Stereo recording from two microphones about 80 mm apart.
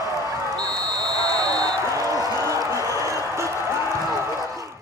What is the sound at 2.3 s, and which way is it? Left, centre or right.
Music, right.